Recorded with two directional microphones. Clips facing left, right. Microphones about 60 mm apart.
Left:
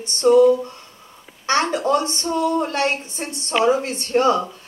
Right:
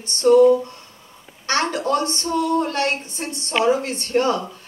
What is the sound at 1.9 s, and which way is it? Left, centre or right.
A woman's voice, left.